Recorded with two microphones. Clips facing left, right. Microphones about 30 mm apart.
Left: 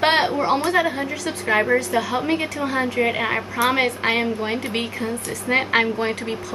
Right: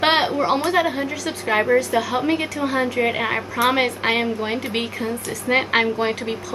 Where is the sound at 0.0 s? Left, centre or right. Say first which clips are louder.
Even; centre.